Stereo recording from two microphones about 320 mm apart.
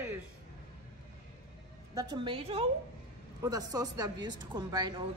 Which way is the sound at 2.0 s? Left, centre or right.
Centre.